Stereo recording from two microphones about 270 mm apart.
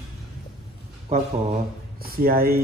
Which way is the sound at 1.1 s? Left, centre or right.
Right.